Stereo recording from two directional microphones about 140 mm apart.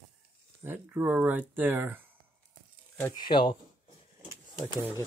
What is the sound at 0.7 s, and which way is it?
Speech, 15° right (ahead or behind).